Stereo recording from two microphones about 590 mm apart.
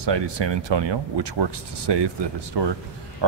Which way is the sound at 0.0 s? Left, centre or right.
Right.